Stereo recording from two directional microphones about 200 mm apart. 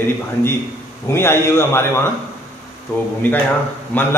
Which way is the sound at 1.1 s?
10° left (ahead or behind).